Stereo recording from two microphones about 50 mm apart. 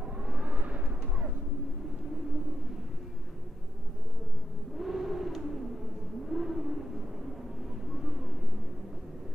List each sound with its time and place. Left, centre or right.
0.0 s vehicle: right
4.7 s a sound: centre
6.2 s vehicle: centre
8.0 s vehicle: centre